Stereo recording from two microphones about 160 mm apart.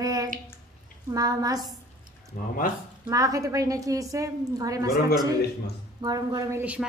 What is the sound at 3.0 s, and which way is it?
A woman's voice, 20° right (ahead or behind).